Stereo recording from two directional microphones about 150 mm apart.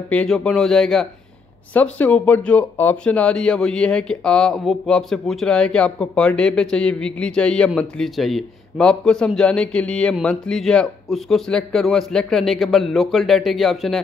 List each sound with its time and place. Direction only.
0.1 s speech: 5° left (ahead or behind)